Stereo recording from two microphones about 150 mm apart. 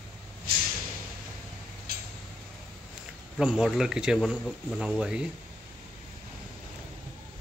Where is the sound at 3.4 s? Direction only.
5° right (ahead or behind).